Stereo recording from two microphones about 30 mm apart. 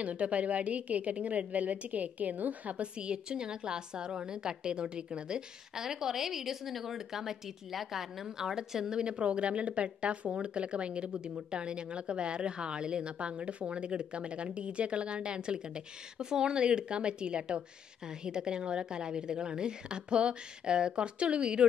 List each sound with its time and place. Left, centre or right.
0.0 s a woman's voice: right
3.0 s a woman's voice: right
5.8 s speech: centre
8.5 s a woman's voice: right
9.0 s speech: right